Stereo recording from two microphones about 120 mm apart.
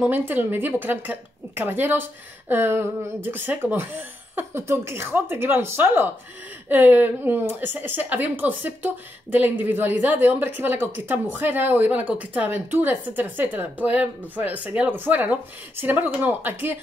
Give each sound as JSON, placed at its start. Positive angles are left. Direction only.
{"t": 0.1, "sound": "a woman's voice", "side_deg": -15}